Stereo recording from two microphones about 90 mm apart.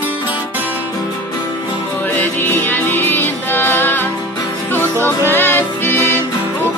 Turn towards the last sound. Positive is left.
turn(degrees=25)  # may be behind; listen again after turning